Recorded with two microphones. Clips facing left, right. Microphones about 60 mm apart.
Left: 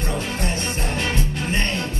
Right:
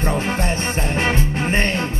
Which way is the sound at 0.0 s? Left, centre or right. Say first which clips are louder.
Right 5 dB; right.